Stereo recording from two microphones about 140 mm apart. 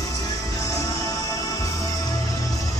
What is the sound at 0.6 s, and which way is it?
Music, 25° left (ahead or behind).